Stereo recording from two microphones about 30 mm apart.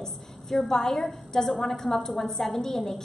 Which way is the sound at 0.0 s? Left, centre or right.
Centre.